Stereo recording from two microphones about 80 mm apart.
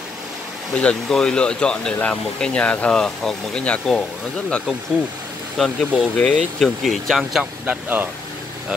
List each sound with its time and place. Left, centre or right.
0.7 s speech: centre
5.6 s speech: centre
7.6 s speech: right